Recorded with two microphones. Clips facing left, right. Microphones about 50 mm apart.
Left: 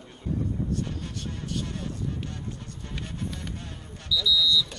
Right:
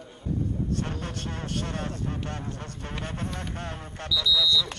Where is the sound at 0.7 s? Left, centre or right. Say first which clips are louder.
Right 1 dB; right.